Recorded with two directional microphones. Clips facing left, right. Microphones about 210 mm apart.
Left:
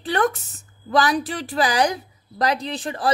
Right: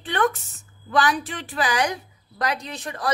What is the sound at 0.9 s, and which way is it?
A woman's voice, 35° left (ahead or behind).